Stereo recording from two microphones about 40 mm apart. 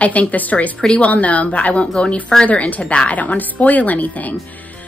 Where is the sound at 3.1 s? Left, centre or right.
Left.